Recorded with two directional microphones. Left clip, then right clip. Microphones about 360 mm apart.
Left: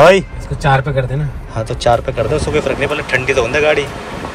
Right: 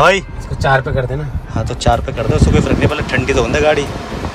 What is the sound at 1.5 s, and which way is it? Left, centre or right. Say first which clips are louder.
Speech: left 2 dB; centre.